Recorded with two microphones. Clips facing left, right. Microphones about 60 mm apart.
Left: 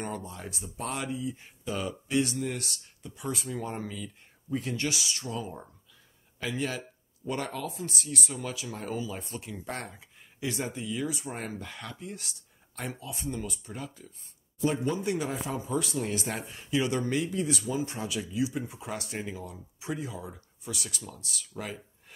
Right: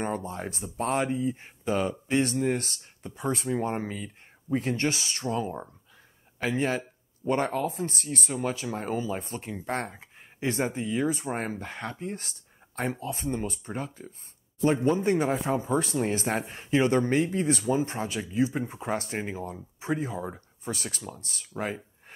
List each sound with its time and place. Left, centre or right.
0.0 s speech: right